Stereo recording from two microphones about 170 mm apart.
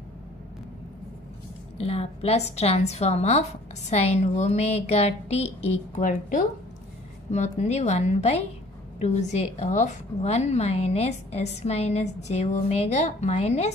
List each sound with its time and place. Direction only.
1.8 s a woman's voice: 35° left (ahead or behind)